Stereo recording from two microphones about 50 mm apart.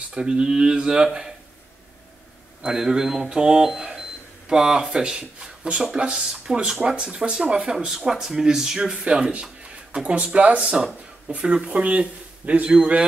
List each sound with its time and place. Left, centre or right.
0.1 s speech: centre
2.6 s speech: centre